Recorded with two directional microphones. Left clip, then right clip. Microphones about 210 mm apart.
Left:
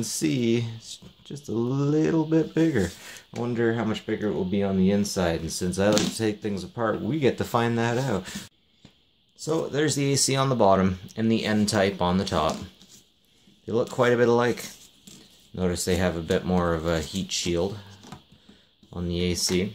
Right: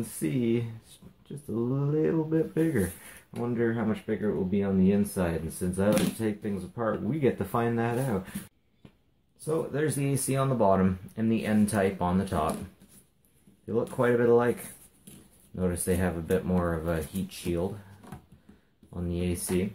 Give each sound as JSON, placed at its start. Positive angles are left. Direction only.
{"t": 0.2, "sound": "speech", "side_deg": 45}
{"t": 9.4, "sound": "speech", "side_deg": 45}
{"t": 13.7, "sound": "speech", "side_deg": 45}
{"t": 15.5, "sound": "speech", "side_deg": 40}
{"t": 18.9, "sound": "speech", "side_deg": 40}